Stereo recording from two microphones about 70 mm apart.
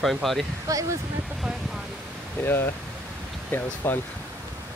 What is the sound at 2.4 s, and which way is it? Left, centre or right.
Speech, left.